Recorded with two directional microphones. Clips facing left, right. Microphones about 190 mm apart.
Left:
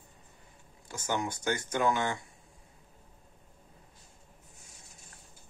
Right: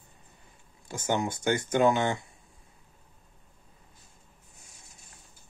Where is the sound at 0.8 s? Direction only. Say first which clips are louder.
Right 4 dB; 25° right (ahead or behind).